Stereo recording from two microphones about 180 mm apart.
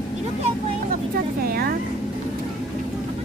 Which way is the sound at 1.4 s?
60° right (ahead or behind).